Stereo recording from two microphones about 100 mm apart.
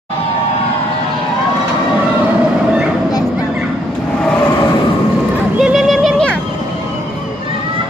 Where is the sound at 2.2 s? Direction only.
10° right (ahead or behind).